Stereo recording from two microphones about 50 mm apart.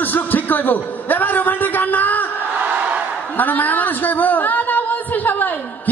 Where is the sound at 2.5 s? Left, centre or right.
Right.